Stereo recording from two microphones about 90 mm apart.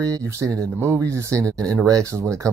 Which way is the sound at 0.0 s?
40° right (ahead or behind).